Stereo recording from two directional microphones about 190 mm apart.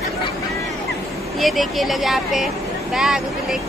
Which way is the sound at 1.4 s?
Centre (ahead or behind).